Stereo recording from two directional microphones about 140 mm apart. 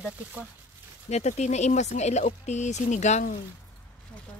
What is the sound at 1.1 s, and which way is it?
Speech, 55° left (ahead or behind).